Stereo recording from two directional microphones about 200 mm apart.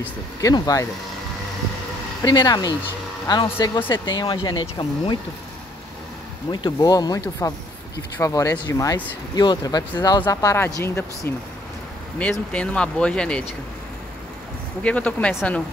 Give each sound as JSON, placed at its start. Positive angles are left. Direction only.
{"t": 0.0, "sound": "speech", "side_deg": 15}
{"t": 2.2, "sound": "speech", "side_deg": 20}
{"t": 6.5, "sound": "speech", "side_deg": 20}
{"t": 14.8, "sound": "speech", "side_deg": 5}